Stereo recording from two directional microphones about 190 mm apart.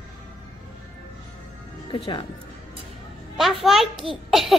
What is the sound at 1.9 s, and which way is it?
Speech, 25° left (ahead or behind).